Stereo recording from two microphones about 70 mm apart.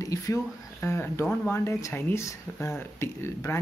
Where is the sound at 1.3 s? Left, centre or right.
Left.